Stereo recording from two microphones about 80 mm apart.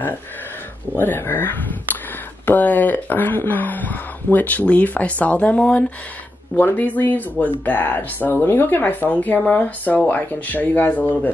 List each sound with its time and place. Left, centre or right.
0.9 s speech: left